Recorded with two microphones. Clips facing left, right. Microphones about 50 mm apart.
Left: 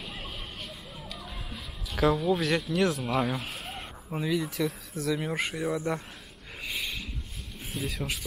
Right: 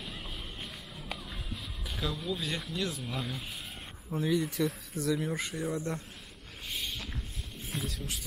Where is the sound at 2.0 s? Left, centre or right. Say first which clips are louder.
Left 11 dB; left.